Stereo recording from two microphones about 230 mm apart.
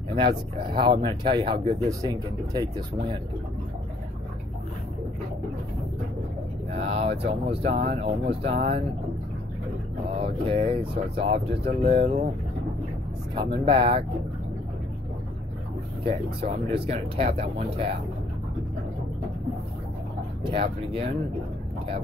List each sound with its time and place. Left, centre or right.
0.1 s speech: right
6.8 s speech: right
10.1 s speech: right
13.3 s speech: right
16.0 s speech: right
20.4 s speech: right